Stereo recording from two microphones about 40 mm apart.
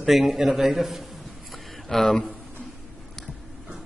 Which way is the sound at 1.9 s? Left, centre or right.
Centre.